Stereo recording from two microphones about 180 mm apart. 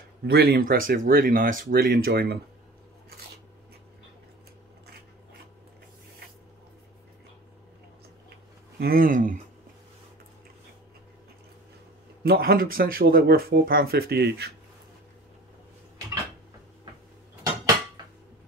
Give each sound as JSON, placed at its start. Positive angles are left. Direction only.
{"t": 0.3, "sound": "speech", "side_deg": -55}
{"t": 8.7, "sound": "speech", "side_deg": -55}
{"t": 12.2, "sound": "speech", "side_deg": -60}